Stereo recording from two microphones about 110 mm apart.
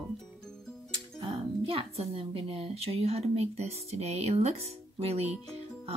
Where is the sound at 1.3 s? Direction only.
60° right (ahead or behind).